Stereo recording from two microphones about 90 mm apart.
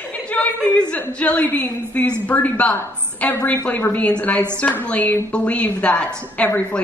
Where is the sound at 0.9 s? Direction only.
15° left (ahead or behind).